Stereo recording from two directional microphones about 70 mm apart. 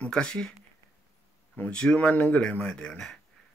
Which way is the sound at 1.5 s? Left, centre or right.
Left.